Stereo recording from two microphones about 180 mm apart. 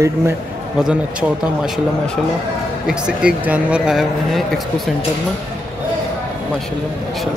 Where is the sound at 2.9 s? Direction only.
5° right (ahead or behind).